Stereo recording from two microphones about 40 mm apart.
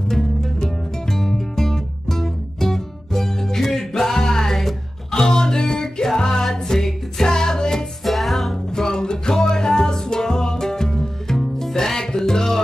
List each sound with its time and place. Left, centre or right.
0.1 s music: centre
8.0 s music: centre
8.7 s music: centre